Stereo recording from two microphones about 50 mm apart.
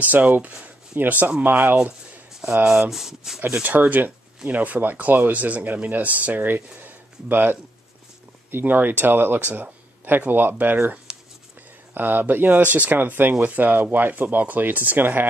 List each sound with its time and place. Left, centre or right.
0.0 s speech: right
2.9 s speech: centre
3.8 s speech: right
6.8 s a sound: right
8.5 s speech: right